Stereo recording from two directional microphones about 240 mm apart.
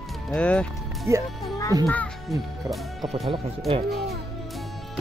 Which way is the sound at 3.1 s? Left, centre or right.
Right.